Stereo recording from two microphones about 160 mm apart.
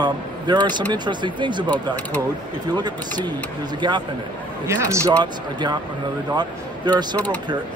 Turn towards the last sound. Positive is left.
turn(degrees=-25)  # may be behind; listen again after turning